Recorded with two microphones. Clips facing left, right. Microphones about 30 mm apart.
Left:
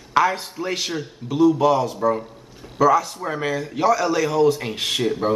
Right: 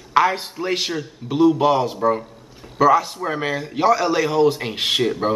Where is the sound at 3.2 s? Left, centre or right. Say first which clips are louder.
Right 1 dB; right.